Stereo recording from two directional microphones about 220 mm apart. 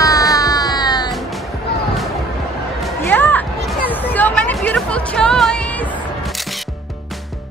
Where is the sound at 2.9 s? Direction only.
10° left (ahead or behind).